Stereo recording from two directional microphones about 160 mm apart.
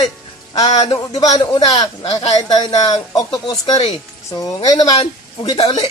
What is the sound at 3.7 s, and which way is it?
Speech, 40° left (ahead or behind).